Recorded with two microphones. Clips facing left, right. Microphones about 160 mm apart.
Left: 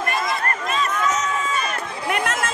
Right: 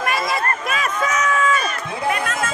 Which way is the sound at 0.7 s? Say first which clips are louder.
Even; 75° right (ahead or behind).